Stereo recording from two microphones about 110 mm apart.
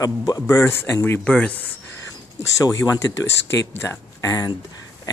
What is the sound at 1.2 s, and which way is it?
Speech, 10° left (ahead or behind).